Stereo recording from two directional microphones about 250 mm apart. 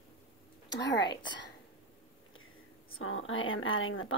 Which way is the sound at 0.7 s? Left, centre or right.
Left.